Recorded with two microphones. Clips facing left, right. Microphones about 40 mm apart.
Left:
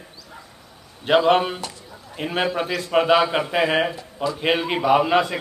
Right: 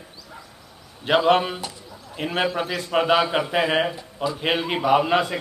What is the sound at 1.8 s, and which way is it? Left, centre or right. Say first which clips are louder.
A man's voice: even; centre.